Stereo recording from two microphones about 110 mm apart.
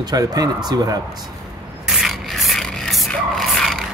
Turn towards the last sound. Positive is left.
turn(degrees=0)  # may be behind; listen again after turning